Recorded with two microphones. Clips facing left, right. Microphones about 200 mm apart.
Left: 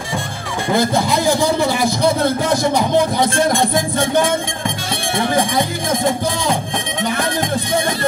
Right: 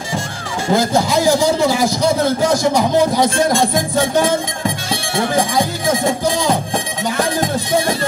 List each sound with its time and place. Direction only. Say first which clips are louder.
0.7 s speech: right 1 dB; 60° left (ahead or behind)